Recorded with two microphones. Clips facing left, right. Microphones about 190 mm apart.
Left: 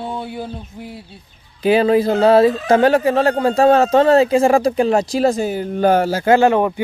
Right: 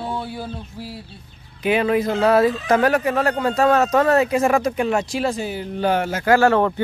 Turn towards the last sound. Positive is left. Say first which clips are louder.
# left 2 dB
turn(degrees=15)  # may be behind; listen again after turning